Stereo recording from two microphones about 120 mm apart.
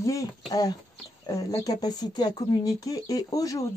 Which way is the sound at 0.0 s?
25° left (ahead or behind).